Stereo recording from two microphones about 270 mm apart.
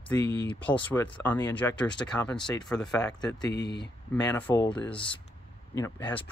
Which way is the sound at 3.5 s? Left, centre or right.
Left.